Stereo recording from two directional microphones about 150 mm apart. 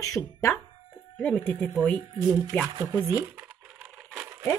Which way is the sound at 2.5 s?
10° left (ahead or behind).